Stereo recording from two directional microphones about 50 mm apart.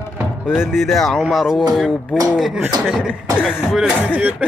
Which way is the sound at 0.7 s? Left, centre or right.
Centre.